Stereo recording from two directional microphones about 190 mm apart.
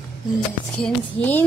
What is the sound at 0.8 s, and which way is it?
Speech, 10° left (ahead or behind).